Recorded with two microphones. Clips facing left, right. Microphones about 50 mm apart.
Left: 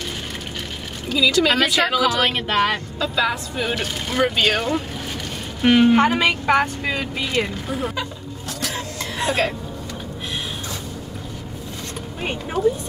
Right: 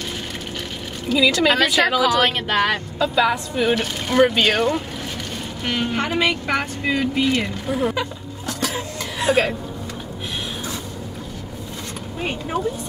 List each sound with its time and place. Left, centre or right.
1.1 s speech: centre
2.5 s speech: centre
5.6 s a woman's voice: left
6.1 s speech: centre
7.8 s speech: centre
8.6 s a sound: centre